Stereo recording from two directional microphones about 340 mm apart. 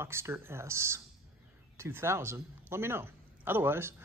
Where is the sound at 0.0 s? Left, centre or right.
Centre.